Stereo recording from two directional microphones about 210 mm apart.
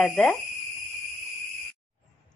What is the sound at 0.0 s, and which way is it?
Speech, centre (ahead or behind).